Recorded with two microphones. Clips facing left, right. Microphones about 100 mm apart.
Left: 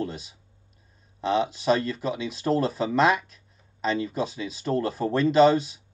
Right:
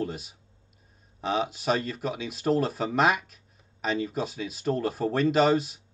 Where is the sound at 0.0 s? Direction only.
5° right (ahead or behind).